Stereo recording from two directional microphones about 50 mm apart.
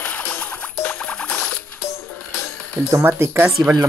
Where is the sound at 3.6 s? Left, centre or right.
Right.